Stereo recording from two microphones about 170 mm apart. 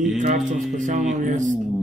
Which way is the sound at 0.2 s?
45° right (ahead or behind).